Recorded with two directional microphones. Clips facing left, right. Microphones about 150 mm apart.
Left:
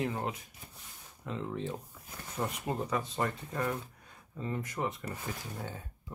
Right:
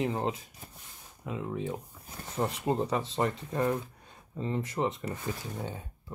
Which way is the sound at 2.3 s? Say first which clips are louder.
Right 5 dB; 30° right (ahead or behind).